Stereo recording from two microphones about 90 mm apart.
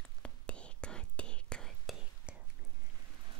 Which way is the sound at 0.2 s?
10° left (ahead or behind).